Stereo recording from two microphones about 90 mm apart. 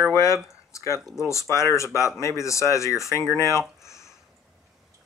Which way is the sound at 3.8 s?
35° left (ahead or behind).